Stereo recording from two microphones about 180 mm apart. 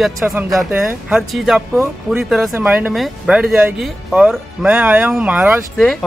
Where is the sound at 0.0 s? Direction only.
5° right (ahead or behind).